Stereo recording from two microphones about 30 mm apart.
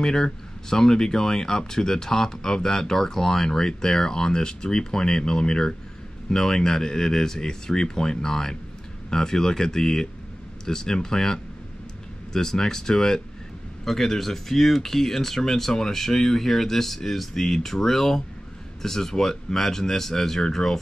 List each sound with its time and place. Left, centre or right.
0.0 s speech: left